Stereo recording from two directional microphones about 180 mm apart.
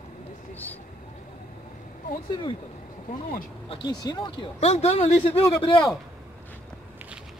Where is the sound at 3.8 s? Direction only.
25° left (ahead or behind).